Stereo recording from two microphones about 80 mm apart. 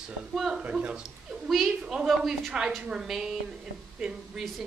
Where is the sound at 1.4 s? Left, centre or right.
Centre.